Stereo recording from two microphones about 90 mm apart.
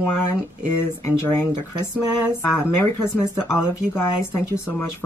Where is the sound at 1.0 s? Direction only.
25° left (ahead or behind).